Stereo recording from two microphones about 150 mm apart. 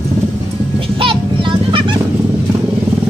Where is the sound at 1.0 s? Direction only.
35° right (ahead or behind).